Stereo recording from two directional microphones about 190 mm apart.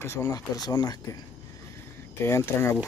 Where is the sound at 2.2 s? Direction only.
10° left (ahead or behind).